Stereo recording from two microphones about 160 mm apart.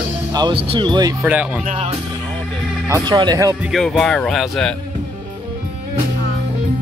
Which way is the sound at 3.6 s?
Centre (ahead or behind).